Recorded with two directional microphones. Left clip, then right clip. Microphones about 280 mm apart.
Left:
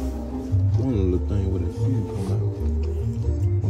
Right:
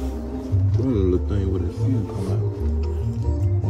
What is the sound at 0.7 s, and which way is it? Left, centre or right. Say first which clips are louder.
Music: right 3 dB; centre.